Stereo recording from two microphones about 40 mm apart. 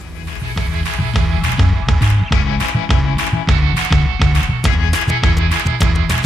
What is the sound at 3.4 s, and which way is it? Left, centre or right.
Music, centre.